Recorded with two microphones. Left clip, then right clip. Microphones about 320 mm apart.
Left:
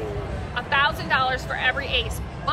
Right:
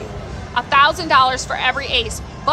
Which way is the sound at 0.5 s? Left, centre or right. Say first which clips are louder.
Right 8 dB; centre.